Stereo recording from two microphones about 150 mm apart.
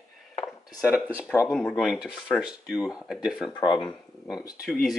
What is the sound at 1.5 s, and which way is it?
Speech, 5° left (ahead or behind).